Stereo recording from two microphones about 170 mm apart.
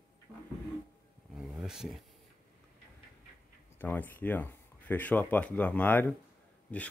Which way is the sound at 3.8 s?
10° left (ahead or behind).